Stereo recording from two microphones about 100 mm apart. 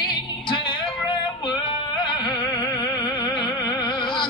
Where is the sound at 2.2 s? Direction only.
40° left (ahead or behind).